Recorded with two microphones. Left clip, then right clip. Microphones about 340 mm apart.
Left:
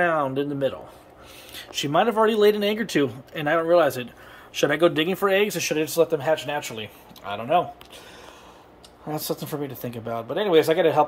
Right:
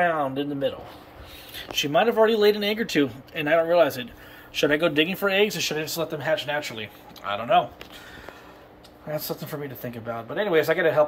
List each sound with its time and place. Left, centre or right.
0.0 s speech: centre
9.1 s speech: left